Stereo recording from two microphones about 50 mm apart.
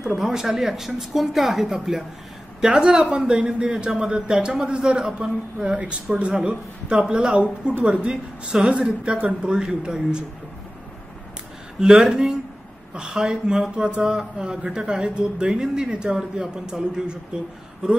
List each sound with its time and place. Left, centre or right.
0.0 s speech: centre
11.8 s speech: centre